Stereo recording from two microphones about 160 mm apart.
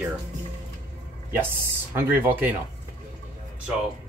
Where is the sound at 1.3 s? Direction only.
15° right (ahead or behind).